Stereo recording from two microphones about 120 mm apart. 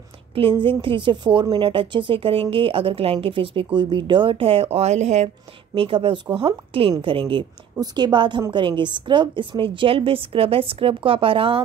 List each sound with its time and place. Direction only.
0.4 s a woman's voice: 45° right (ahead or behind); by 5.3 s 65° right (ahead or behind)
5.8 s a woman's voice: 45° right (ahead or behind)